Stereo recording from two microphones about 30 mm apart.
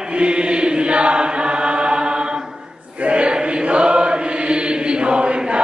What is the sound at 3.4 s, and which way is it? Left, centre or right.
Chant, right.